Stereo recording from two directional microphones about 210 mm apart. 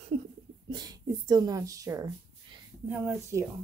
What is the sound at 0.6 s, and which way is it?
Speech, 20° right (ahead or behind).